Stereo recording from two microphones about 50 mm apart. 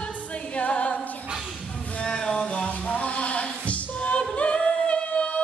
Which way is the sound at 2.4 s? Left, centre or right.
Left.